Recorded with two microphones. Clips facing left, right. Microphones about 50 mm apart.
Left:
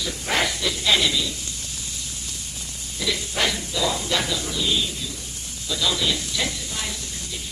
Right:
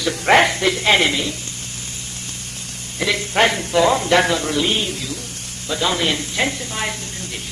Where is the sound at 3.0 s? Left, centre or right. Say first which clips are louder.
Right 8 dB; right.